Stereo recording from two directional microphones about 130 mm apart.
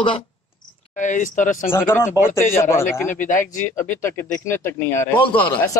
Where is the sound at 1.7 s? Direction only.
15° left (ahead or behind).